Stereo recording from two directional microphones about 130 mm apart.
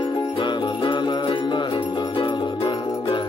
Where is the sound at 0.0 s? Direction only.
35° left (ahead or behind).